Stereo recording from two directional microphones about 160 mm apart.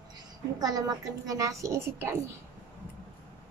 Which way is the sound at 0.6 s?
25° right (ahead or behind).